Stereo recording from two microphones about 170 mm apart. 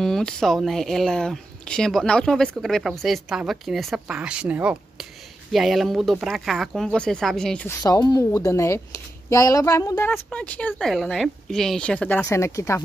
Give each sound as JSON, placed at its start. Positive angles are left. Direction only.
{"t": 0.0, "sound": "speech", "side_deg": 5}
{"t": 7.6, "sound": "speech", "side_deg": 20}